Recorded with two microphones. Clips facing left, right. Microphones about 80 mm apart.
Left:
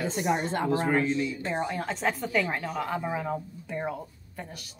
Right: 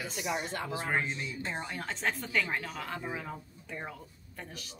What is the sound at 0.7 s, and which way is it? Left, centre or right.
Speech, right.